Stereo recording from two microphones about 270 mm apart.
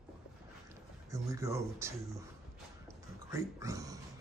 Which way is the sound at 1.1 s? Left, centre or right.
Centre.